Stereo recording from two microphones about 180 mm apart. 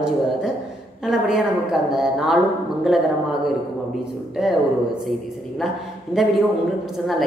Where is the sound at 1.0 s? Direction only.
5° right (ahead or behind).